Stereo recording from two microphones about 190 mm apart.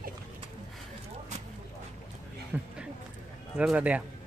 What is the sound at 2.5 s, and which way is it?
Speech, 10° right (ahead or behind).